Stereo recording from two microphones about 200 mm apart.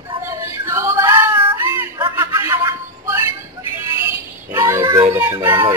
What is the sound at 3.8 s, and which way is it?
Synthetic singing, 10° right (ahead or behind).